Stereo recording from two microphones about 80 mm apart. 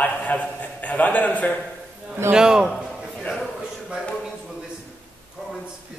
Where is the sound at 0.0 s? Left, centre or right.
Centre.